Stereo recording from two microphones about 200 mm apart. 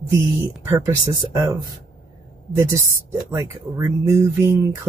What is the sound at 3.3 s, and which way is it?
Speech, 15° right (ahead or behind).